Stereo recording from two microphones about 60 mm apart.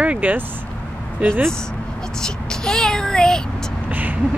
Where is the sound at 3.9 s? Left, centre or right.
Right.